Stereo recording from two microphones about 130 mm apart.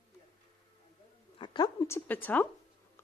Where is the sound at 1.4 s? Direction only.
35° left (ahead or behind).